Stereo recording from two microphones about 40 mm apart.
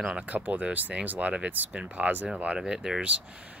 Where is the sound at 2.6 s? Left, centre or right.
Centre.